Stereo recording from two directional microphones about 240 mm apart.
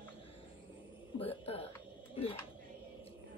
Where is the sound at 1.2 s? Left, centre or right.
Left.